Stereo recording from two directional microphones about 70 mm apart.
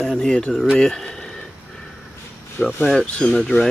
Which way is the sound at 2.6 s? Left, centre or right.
Left.